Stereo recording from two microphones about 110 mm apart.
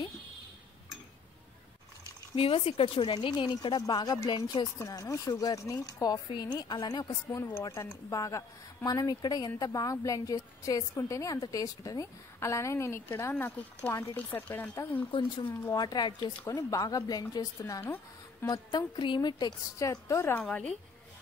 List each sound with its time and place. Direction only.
2.3 s a woman's voice: 60° left (ahead or behind); by 6.1 s 30° left (ahead or behind)
6.1 s a woman's voice: 40° left (ahead or behind)
7.2 s a woman's voice: 20° left (ahead or behind)
15.0 s a woman's voice: 50° left (ahead or behind)
16.4 s a woman's voice: 30° left (ahead or behind)
19.8 s a woman's voice: 25° left (ahead or behind)
20.3 s speech: 10° left (ahead or behind)